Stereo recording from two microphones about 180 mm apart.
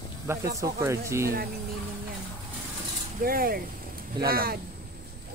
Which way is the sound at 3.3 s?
55° right (ahead or behind).